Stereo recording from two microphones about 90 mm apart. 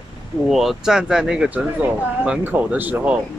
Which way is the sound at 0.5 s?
Centre (ahead or behind).